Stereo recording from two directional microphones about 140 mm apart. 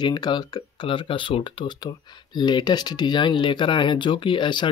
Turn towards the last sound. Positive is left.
turn(degrees=35)  # may be behind; listen again after turning